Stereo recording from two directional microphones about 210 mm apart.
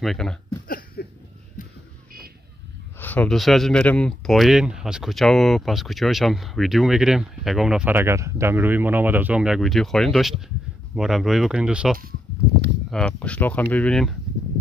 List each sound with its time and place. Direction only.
0.0 s speech: centre (ahead or behind)
1.0 s a sound: 50° left (ahead or behind)
3.0 s speech: 5° left (ahead or behind)